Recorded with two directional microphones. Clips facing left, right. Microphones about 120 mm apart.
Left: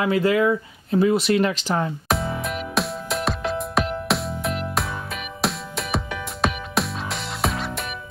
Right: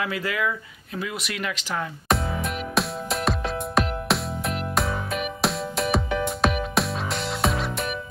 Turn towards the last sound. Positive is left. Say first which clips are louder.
# right 2 dB
turn(degrees=0)  # may be behind; listen again after turning